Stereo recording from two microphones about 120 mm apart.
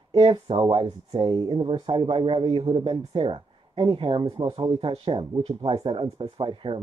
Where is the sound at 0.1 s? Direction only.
45° right (ahead or behind).